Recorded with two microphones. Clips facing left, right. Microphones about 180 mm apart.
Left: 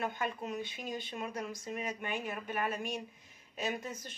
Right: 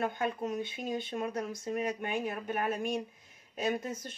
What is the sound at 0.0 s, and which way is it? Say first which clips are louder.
Speech: right 4 dB; 45° right (ahead or behind).